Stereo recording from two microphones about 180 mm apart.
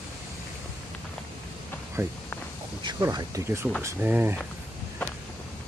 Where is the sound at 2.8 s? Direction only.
20° right (ahead or behind).